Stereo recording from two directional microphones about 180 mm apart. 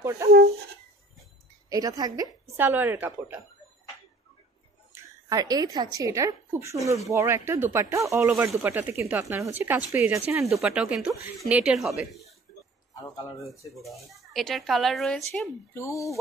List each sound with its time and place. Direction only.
0.2 s speech: 15° right (ahead or behind)
1.7 s a woman's voice: 20° right (ahead or behind)
5.3 s speech: 20° right (ahead or behind); by 12.3 s centre (ahead or behind)
13.8 s speech: centre (ahead or behind)
15.7 s speech: 15° left (ahead or behind)